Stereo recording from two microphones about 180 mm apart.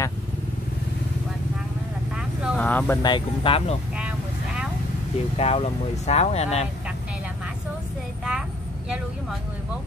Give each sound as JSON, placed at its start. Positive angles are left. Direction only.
{"t": 2.1, "sound": "vehicle", "side_deg": -5}
{"t": 2.6, "sound": "a sound", "side_deg": 10}
{"t": 3.0, "sound": "speech", "side_deg": 25}
{"t": 5.4, "sound": "speech", "side_deg": 35}
{"t": 8.3, "sound": "vehicle", "side_deg": -5}